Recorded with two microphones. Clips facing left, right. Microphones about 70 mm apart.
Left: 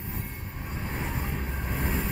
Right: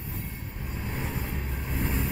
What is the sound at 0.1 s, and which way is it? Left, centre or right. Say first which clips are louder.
Vehicle: left 1 dB; left.